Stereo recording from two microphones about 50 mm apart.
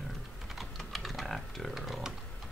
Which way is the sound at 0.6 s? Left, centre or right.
Centre.